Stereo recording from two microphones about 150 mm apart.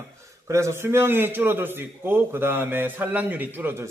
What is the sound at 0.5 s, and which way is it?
A man's voice, 20° right (ahead or behind).